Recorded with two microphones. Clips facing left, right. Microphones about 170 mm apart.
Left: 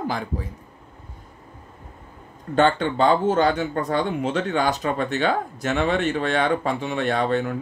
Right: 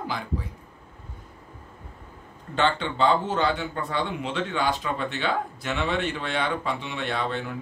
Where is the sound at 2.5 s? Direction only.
45° left (ahead or behind).